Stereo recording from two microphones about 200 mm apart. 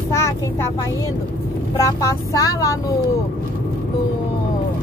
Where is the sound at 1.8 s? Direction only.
15° left (ahead or behind).